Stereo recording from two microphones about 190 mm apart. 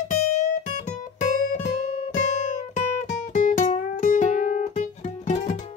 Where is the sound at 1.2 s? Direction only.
35° left (ahead or behind).